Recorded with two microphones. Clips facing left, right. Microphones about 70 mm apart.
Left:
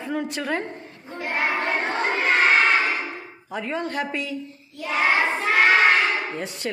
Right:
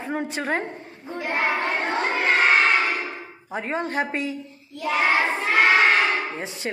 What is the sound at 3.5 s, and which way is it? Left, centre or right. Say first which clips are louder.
Speech: right 1 dB; right.